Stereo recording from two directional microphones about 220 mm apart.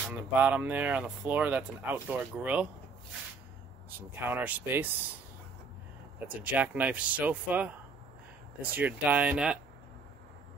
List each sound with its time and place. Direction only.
0.1 s speech: 5° right (ahead or behind)
4.1 s speech: 10° right (ahead or behind)
6.1 s speech: 5° right (ahead or behind)